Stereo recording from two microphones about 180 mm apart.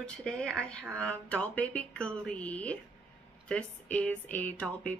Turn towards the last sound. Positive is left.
turn(degrees=5)  # may be behind; listen again after turning